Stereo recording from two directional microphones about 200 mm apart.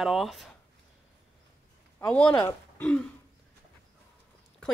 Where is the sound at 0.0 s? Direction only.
Centre (ahead or behind).